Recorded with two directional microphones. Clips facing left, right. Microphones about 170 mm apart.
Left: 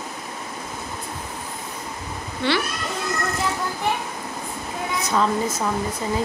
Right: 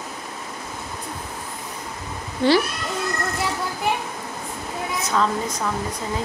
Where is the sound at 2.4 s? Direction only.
40° right (ahead or behind).